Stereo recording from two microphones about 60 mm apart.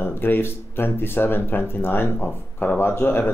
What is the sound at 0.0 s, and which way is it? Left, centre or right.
Speech, left.